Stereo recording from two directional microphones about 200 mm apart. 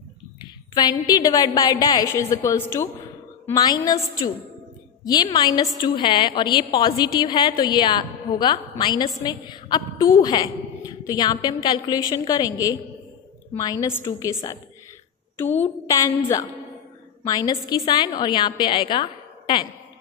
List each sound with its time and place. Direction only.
0.4 s a woman's voice: 20° left (ahead or behind)
15.9 s a woman's voice: 15° left (ahead or behind)